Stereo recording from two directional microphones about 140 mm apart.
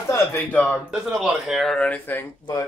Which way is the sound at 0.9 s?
Centre (ahead or behind).